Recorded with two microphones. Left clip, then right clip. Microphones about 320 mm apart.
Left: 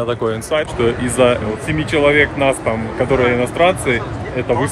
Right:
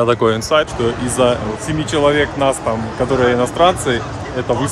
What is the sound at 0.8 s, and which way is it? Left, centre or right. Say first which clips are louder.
Speech: left 1 dB; centre.